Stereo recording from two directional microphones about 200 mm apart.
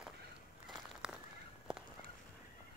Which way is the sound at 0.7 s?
Centre (ahead or behind).